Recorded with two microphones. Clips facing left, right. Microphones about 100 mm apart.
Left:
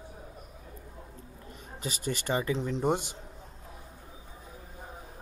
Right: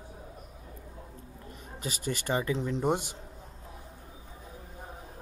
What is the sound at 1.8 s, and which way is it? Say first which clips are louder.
Speech: even; 20° left (ahead or behind).